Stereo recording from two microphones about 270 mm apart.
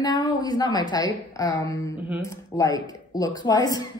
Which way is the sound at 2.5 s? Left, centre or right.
Centre.